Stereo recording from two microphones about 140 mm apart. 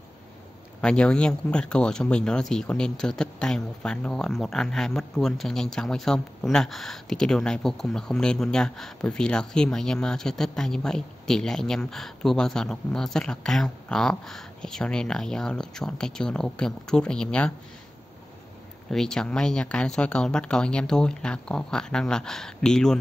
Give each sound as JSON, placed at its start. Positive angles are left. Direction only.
{"t": 0.7, "sound": "speech", "side_deg": 5}
{"t": 18.9, "sound": "speech", "side_deg": 5}